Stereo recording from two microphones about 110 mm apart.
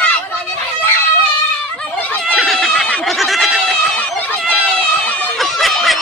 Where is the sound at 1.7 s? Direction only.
15° left (ahead or behind).